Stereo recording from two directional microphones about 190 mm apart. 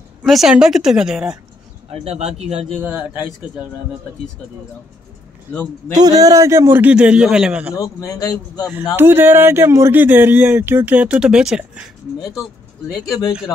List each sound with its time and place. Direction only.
0.2 s a woman's voice: centre (ahead or behind)
1.9 s speech: 35° right (ahead or behind)
2.8 s speech: 10° right (ahead or behind)
5.9 s speech: 20° right (ahead or behind)
7.7 s a man's voice: 15° left (ahead or behind)
8.9 s speech: 10° right (ahead or behind)